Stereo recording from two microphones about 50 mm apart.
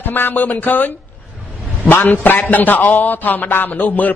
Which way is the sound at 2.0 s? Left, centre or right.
Left.